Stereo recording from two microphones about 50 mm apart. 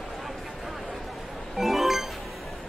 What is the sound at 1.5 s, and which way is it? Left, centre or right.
Music, centre.